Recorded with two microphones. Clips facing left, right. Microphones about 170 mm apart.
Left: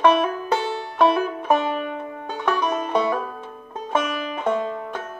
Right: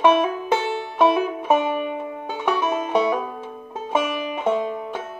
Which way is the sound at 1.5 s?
15° right (ahead or behind).